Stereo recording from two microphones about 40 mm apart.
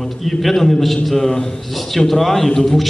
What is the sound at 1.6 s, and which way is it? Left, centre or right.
A man's voice, centre.